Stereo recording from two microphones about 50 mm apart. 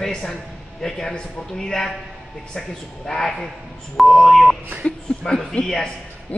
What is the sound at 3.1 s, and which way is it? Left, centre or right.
A man's voice, centre.